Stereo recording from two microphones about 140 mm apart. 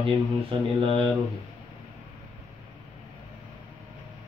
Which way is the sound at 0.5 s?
40° right (ahead or behind).